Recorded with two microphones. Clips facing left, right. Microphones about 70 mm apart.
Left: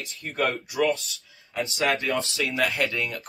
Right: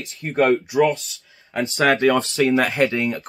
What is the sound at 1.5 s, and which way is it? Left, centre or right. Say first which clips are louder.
Speech: right 7 dB; right.